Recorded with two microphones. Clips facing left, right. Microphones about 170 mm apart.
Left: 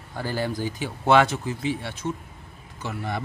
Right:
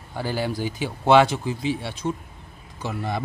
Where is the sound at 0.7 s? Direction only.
30° right (ahead or behind).